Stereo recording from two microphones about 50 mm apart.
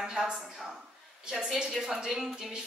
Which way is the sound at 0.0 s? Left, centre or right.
Centre.